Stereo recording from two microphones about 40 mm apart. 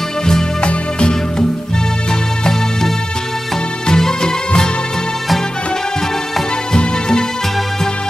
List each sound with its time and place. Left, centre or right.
0.3 s music: centre
3.8 s music: centre
6.7 s music: centre